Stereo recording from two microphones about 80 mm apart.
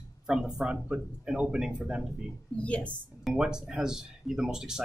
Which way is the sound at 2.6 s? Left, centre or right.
Centre.